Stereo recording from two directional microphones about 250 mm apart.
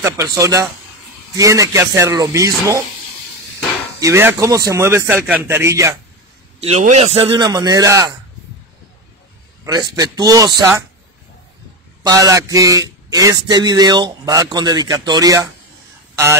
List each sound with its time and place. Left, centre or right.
0.0 s a man's voice: centre
4.0 s a man's voice: centre
6.6 s a man's voice: right
9.7 s a man's voice: centre
12.0 s a man's voice: centre